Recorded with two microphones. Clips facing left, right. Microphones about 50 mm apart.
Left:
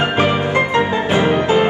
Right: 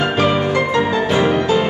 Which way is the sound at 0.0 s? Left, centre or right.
Left.